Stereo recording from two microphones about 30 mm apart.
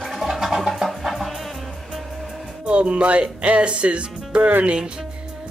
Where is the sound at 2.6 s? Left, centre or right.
Right.